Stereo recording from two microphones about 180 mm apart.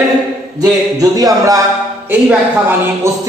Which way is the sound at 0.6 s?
20° right (ahead or behind).